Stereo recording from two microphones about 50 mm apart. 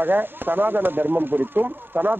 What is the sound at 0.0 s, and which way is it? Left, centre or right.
Speech, right.